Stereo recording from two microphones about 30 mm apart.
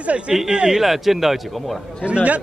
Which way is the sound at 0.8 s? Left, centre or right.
Centre.